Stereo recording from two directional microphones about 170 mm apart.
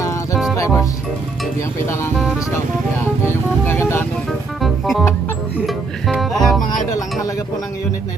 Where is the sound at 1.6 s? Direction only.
15° left (ahead or behind).